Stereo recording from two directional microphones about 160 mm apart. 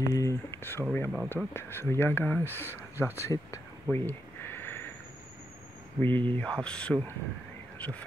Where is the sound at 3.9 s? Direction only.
15° left (ahead or behind).